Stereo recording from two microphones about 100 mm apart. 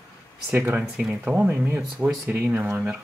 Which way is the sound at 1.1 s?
15° right (ahead or behind).